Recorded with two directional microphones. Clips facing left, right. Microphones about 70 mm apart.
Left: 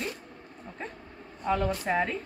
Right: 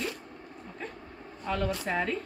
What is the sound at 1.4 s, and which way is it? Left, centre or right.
Speech, centre.